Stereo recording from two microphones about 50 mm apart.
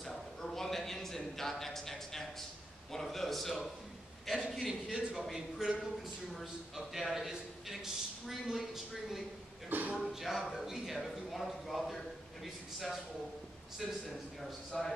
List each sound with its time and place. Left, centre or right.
0.0 s a sound: centre
2.9 s a man's voice: centre
4.8 s a man's voice: centre
9.7 s a man's voice: right
10.0 s a man's voice: centre
14.7 s a man's voice: centre